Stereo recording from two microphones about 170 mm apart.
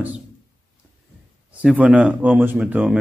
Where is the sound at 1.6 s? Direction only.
10° right (ahead or behind).